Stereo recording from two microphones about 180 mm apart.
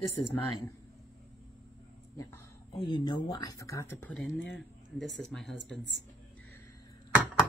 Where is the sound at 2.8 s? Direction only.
25° left (ahead or behind).